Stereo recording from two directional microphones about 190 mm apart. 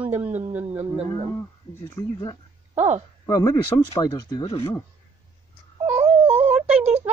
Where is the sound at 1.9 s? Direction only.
20° left (ahead or behind).